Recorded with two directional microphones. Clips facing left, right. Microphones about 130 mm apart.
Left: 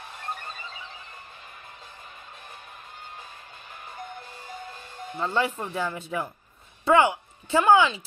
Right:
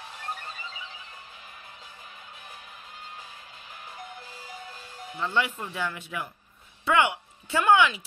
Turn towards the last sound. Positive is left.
turn(degrees=30)  # may be behind; listen again after turning